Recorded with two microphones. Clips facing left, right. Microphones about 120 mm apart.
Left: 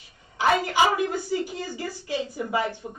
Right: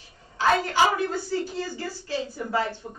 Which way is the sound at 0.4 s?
15° left (ahead or behind).